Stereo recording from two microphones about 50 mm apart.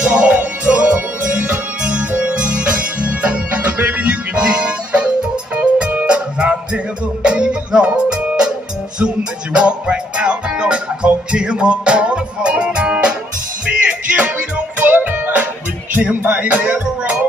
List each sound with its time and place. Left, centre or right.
0.0 s music: right
1.9 s music: right
13.7 s music: right